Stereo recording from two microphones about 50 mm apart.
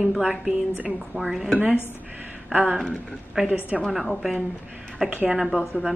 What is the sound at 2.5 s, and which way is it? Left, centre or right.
Speech, right.